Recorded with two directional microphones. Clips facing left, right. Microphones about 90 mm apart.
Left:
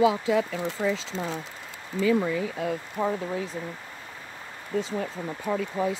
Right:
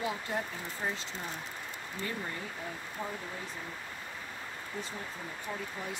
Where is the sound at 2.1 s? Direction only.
90° left.